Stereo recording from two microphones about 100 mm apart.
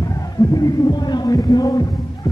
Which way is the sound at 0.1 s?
40° left (ahead or behind).